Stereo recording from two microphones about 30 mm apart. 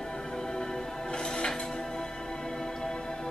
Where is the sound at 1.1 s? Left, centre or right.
Left.